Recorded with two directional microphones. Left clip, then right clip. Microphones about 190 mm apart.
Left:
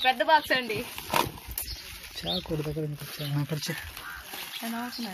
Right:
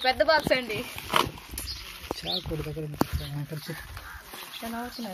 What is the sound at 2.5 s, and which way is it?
Speech, 40° left (ahead or behind).